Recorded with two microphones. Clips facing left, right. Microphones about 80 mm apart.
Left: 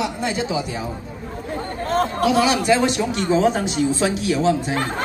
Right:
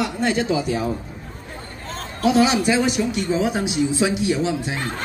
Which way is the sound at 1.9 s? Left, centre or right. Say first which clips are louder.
Left 9 dB; left.